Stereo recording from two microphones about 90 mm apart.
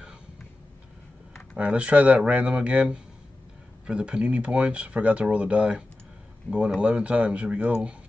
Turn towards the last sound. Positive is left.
turn(degrees=-15)  # may be behind; listen again after turning